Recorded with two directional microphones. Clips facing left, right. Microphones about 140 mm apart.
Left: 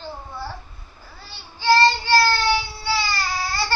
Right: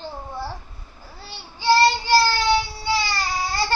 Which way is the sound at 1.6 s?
10° right (ahead or behind).